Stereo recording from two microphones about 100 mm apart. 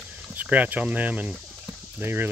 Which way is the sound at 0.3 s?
15° right (ahead or behind).